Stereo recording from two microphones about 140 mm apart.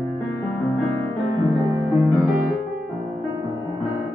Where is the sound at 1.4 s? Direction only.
25° right (ahead or behind).